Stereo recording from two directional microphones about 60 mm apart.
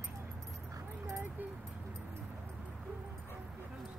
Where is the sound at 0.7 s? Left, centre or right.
Right.